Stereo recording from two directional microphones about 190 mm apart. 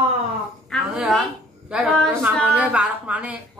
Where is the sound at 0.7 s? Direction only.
Centre (ahead or behind).